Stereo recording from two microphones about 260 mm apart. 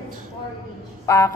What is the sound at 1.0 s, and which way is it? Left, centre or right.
Fowl, centre.